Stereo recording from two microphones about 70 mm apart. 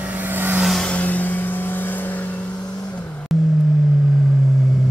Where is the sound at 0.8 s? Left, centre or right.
Centre.